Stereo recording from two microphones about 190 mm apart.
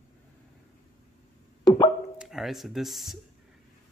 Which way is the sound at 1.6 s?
20° left (ahead or behind).